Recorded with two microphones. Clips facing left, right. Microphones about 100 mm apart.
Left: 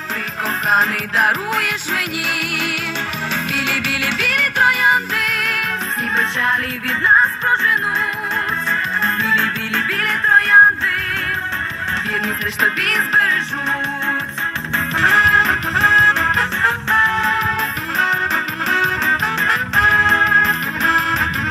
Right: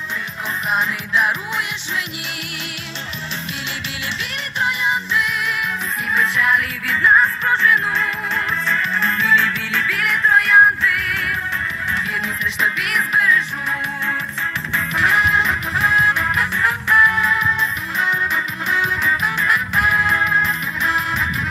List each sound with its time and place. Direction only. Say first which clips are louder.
1.1 s music: left 2 dB; 40° left (ahead or behind)
2.0 s music: left 5 dB; 60° left (ahead or behind)
6.1 s music: right 2 dB; 35° left (ahead or behind)
9.0 s music: right 2 dB; 45° left (ahead or behind)
12.5 s music: left 1 dB; 45° left (ahead or behind)
15.0 s music: left 3 dB; 45° left (ahead or behind)